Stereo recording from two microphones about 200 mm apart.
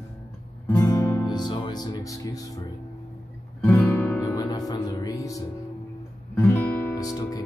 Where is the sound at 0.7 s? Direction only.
15° left (ahead or behind).